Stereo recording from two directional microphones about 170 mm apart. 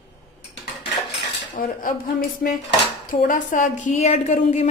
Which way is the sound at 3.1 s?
50° left (ahead or behind).